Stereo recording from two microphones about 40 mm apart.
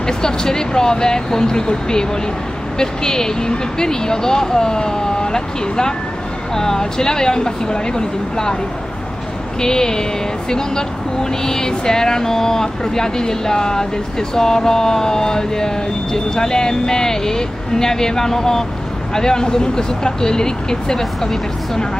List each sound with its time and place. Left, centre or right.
0.0 s vehicle: centre
9.6 s vehicle: centre